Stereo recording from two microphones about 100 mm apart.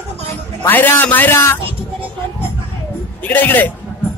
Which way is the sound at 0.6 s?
20° left (ahead or behind).